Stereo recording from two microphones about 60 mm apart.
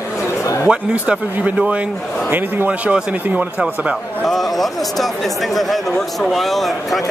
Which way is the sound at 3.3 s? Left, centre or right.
Centre.